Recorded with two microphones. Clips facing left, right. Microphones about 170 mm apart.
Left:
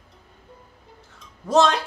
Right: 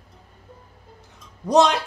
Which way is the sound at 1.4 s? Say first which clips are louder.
Right 1 dB; 15° right (ahead or behind).